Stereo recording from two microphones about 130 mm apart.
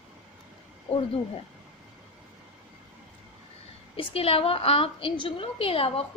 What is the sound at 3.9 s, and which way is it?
A woman's voice, 50° left (ahead or behind).